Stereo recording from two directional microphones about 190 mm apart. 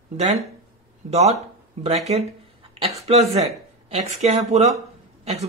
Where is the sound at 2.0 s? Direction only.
30° right (ahead or behind).